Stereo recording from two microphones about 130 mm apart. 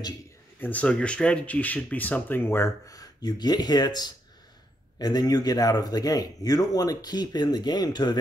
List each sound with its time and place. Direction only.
0.6 s speech: 10° left (ahead or behind); by 8.2 s 35° left (ahead or behind)